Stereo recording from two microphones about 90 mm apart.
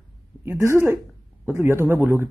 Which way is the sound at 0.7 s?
30° right (ahead or behind).